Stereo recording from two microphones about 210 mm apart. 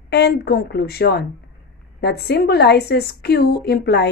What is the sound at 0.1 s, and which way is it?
Speech, 50° left (ahead or behind).